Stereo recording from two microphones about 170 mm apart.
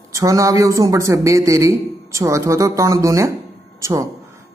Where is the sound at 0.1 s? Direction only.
20° right (ahead or behind).